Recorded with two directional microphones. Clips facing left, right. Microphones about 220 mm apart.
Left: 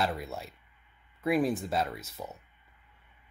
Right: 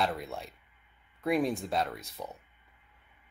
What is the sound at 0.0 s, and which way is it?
Speech, centre (ahead or behind).